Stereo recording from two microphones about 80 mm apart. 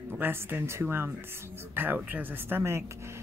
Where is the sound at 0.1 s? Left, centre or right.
Right.